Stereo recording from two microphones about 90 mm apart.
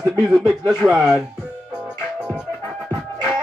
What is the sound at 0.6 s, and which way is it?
Speech, 20° left (ahead or behind).